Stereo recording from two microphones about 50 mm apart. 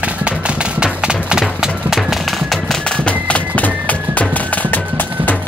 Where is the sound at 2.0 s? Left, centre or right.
Centre.